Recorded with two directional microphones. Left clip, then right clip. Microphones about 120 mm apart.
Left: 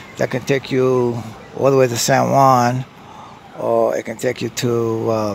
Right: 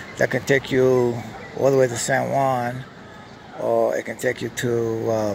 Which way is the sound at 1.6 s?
45° left (ahead or behind).